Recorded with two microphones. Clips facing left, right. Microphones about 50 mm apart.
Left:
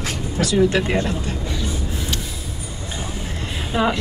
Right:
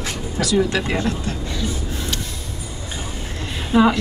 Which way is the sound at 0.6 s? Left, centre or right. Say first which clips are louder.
Left 4 dB; left.